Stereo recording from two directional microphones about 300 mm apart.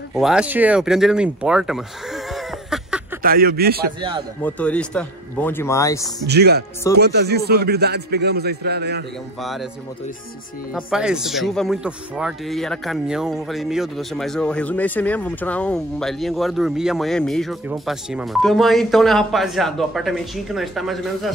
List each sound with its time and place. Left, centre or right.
0.1 s speech: centre
3.2 s a man's voice: right
4.5 s speech: centre
6.2 s a man's voice: right
9.4 s speech: centre
10.7 s speech: centre